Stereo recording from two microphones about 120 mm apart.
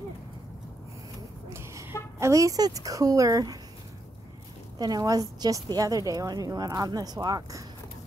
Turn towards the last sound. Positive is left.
turn(degrees=-35)  # may be behind; listen again after turning